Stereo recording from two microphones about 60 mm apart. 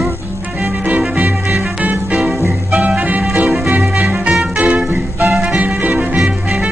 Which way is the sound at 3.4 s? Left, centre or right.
Centre.